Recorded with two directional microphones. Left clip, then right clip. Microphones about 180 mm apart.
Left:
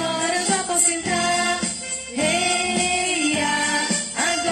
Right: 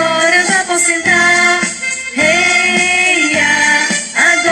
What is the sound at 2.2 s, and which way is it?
Music, 20° right (ahead or behind).